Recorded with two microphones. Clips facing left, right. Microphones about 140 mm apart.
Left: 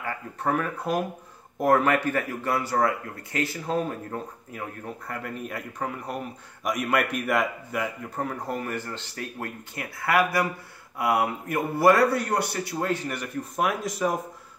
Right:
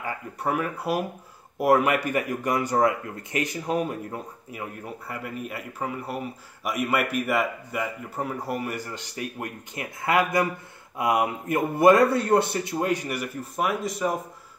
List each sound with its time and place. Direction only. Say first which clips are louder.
0.0 s speech: even; 10° right (ahead or behind)
12.7 s speech: right 2 dB; 15° right (ahead or behind)